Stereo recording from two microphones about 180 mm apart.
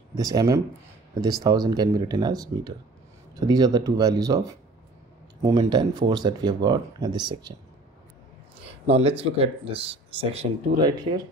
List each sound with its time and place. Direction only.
0.1 s speech: 20° right (ahead or behind)
8.8 s speech: 35° right (ahead or behind)
10.9 s speech: 25° right (ahead or behind)